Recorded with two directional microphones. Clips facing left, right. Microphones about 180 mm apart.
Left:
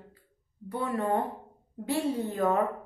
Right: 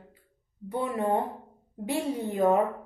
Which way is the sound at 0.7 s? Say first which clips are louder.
Right 2 dB; 20° right (ahead or behind).